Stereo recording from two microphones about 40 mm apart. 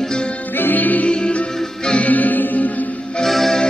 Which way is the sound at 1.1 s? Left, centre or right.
Left.